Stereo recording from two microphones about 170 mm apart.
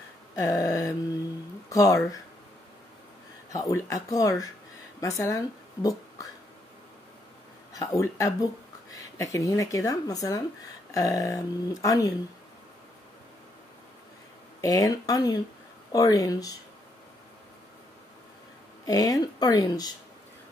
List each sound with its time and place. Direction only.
0.4 s speech: 20° left (ahead or behind)
3.5 s speech: 20° left (ahead or behind)
7.7 s speech: 20° left (ahead or behind)
14.6 s speech: 20° left (ahead or behind)
18.9 s speech: 20° left (ahead or behind)